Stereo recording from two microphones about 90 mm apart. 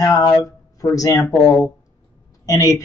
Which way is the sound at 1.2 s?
25° left (ahead or behind).